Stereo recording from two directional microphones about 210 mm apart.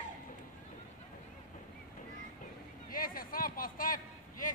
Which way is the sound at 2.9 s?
40° left (ahead or behind).